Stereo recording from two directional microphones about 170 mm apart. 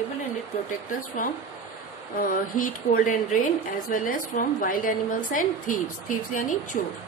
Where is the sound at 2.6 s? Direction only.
55° left (ahead or behind).